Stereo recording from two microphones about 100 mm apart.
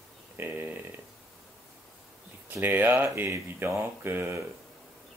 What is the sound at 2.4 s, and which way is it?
A man's voice, 20° right (ahead or behind).